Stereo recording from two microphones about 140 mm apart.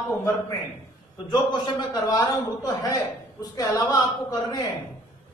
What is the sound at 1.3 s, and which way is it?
A man's voice, 30° left (ahead or behind).